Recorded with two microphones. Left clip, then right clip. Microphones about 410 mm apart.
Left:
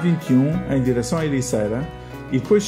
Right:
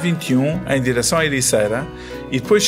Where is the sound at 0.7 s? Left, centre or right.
Right.